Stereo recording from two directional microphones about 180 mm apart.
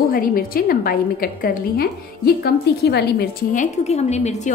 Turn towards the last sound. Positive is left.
turn(degrees=40)  # may be behind; listen again after turning